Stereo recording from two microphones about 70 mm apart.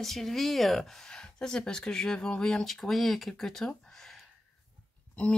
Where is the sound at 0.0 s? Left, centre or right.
Centre.